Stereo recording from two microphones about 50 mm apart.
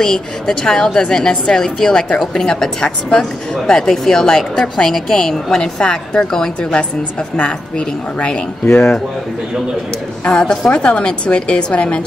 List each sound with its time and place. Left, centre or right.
0.0 s a woman's voice: centre
10.2 s a woman's voice: centre